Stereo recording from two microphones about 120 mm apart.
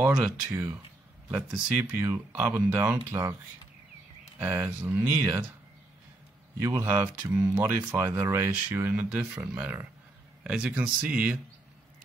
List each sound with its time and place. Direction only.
0.0 s speech: 10° right (ahead or behind)
4.4 s speech: 20° right (ahead or behind)
6.6 s speech: 20° right (ahead or behind)